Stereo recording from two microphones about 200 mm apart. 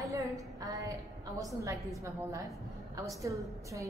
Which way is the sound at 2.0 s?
15° right (ahead or behind).